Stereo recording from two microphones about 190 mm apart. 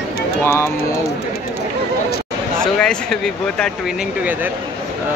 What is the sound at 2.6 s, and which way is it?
Speech, 5° left (ahead or behind).